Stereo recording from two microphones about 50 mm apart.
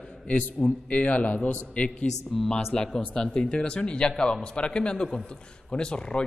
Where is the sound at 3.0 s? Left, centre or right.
Left.